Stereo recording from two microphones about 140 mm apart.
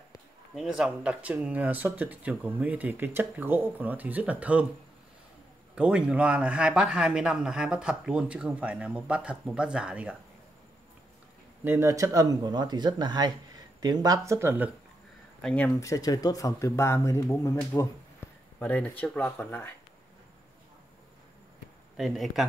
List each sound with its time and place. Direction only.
0.6 s speech: 5° right (ahead or behind)
5.8 s speech: 5° right (ahead or behind)
11.6 s speech: 15° right (ahead or behind)
15.4 s speech: 10° left (ahead or behind)
15.8 s speech: 25° left (ahead or behind)
21.9 s speech: centre (ahead or behind)